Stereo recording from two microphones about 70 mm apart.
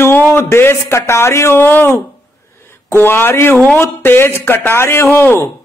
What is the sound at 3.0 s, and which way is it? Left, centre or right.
A man's voice, left.